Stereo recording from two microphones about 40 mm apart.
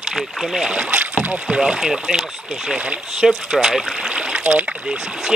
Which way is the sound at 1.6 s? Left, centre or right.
Centre.